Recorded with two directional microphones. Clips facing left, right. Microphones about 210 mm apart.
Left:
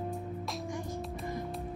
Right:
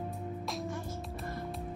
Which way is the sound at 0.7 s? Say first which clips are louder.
Left 2 dB; 15° left (ahead or behind).